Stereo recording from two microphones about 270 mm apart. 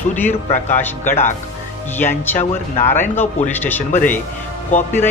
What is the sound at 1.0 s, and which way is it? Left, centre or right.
Speech, left.